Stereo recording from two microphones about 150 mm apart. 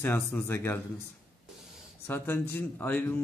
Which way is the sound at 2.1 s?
15° left (ahead or behind).